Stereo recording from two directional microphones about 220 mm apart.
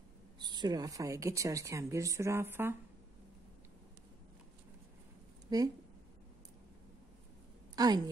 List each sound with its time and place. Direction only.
0.4 s speech: 20° right (ahead or behind)
5.5 s speech: 15° right (ahead or behind)
7.7 s a sound: 15° right (ahead or behind)